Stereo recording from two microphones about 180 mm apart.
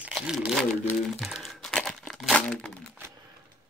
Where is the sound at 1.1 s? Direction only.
Centre (ahead or behind).